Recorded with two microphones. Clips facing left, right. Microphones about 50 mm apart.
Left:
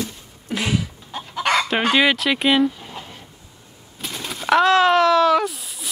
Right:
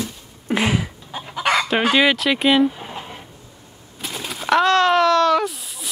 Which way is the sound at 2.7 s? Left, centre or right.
Right.